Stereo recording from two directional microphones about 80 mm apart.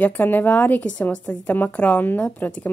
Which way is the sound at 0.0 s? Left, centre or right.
Left.